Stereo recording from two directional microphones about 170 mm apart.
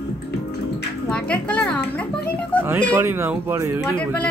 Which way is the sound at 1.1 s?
5° left (ahead or behind).